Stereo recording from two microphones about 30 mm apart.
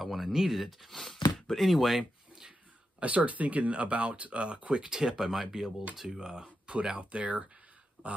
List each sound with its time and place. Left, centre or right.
0.0 s speech: centre
0.8 s speech: centre
3.0 s speech: right
4.8 s speech: centre
6.0 s speech: right